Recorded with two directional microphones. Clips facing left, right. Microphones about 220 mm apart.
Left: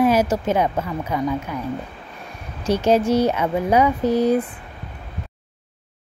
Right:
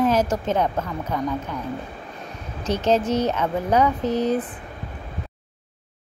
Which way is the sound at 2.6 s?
10° left (ahead or behind).